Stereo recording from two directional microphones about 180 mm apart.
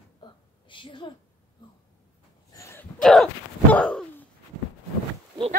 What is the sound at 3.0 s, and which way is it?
Speech, centre (ahead or behind).